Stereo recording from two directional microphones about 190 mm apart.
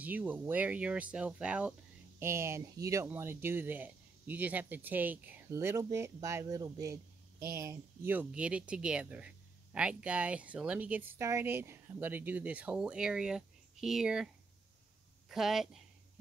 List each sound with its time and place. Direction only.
0.0 s speech: 10° right (ahead or behind)